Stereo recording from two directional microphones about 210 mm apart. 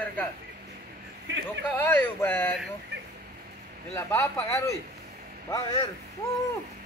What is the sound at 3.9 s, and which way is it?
Speech, 15° left (ahead or behind).